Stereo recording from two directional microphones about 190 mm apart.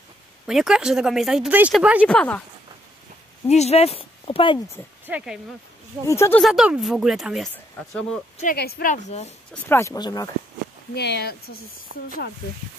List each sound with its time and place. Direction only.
0.5 s speech: centre (ahead or behind)
2.0 s speech: 5° left (ahead or behind)
3.4 s speech: 35° left (ahead or behind)
5.0 s speech: 5° right (ahead or behind)
6.0 s speech: 15° left (ahead or behind)
6.4 s speech: 5° right (ahead or behind)
8.5 s speech: 55° left (ahead or behind); by 9.3 s 35° left (ahead or behind)
9.5 s speech: 15° left (ahead or behind)
11.0 s speech: 60° left (ahead or behind)
11.9 s speech: 40° right (ahead or behind)